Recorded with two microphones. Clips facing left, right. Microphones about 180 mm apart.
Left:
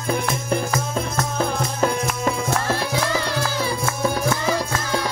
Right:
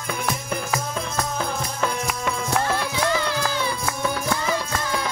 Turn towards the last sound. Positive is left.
turn(degrees=35)  # may be behind; listen again after turning